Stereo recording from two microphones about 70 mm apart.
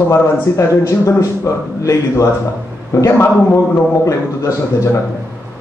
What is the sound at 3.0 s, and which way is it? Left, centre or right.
Speech, left.